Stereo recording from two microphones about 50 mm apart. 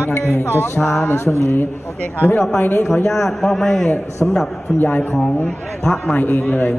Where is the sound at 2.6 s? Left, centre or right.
Left.